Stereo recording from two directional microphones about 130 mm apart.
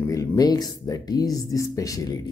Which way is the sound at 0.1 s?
25° left (ahead or behind).